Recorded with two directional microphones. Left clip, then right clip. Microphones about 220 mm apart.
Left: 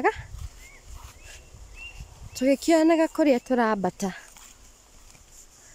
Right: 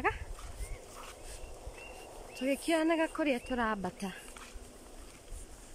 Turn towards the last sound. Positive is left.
turn(degrees=30)  # may be behind; listen again after turning